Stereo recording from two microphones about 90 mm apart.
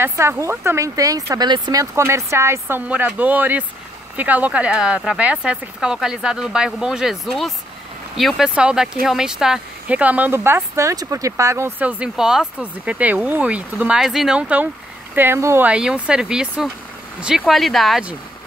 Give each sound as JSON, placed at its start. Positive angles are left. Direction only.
{"t": 0.0, "sound": "speech", "side_deg": -30}
{"t": 2.0, "sound": "speech", "side_deg": -30}
{"t": 2.9, "sound": "speech", "side_deg": -20}
{"t": 11.8, "sound": "speech", "side_deg": -10}
{"t": 15.1, "sound": "speech", "side_deg": -25}
{"t": 15.7, "sound": "speech", "side_deg": -10}
{"t": 17.6, "sound": "speech", "side_deg": 0}